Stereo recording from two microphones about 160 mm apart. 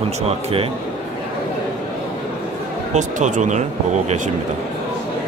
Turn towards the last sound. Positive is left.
turn(degrees=-50)  # may be behind; listen again after turning